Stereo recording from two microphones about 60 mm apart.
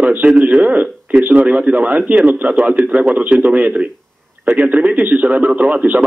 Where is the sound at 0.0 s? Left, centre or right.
Right.